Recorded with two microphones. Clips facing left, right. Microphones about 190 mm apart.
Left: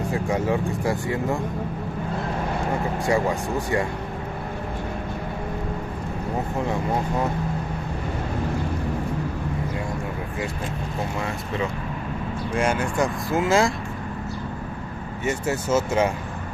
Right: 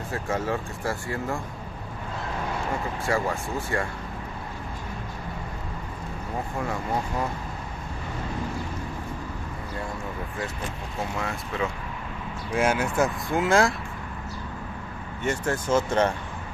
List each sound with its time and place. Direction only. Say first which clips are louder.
0.1 s speech: left 3 dB; 15° left (ahead or behind)
3.1 s speech: left 4 dB; 15° left (ahead or behind)
12.5 s speech: even; 5° right (ahead or behind)
15.2 s speech: left 1 dB; 10° left (ahead or behind)